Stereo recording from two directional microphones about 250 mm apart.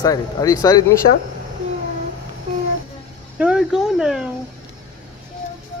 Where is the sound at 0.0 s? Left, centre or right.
Centre.